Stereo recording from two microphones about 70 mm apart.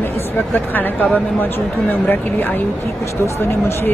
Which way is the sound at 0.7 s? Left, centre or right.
Left.